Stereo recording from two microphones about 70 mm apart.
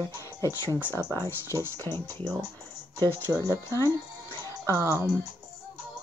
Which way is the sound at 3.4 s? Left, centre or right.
Left.